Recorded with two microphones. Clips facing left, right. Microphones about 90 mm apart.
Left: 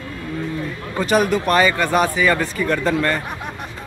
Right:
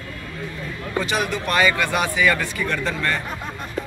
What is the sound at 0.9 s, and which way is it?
A man's voice, 40° left (ahead or behind).